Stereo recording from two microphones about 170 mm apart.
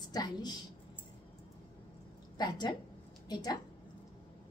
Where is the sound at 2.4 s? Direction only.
25° left (ahead or behind).